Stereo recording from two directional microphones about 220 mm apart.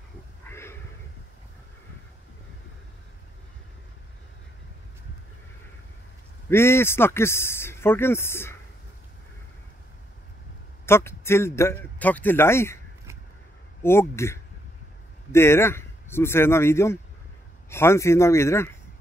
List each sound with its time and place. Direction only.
0.5 s a sound: 10° left (ahead or behind)
6.5 s speech: 10° left (ahead or behind)
10.9 s speech: 10° left (ahead or behind)
13.8 s speech: 10° left (ahead or behind)